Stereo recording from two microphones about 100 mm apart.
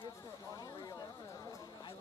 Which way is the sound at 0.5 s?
35° left (ahead or behind).